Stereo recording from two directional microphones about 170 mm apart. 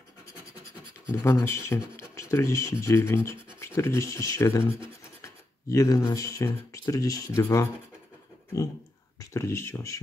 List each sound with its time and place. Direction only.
1.2 s speech: 15° left (ahead or behind)
9.2 s speech: 15° left (ahead or behind)